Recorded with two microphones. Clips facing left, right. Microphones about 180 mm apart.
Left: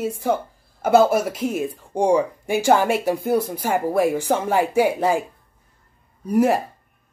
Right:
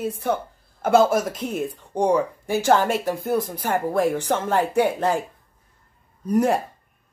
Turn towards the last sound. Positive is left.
turn(degrees=5)  # may be behind; listen again after turning